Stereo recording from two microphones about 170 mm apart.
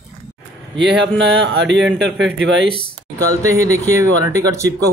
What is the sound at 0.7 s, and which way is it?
Speech, 90° right.